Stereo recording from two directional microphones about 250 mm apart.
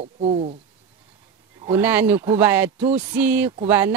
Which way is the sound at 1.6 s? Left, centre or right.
Centre.